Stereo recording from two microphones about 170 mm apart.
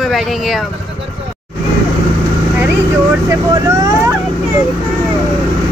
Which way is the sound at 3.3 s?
20° right (ahead or behind).